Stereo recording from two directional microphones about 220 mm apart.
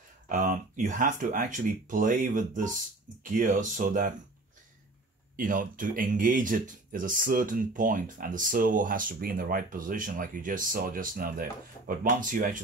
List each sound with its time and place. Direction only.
0.3 s speech: 35° right (ahead or behind)
5.3 s speech: 40° right (ahead or behind)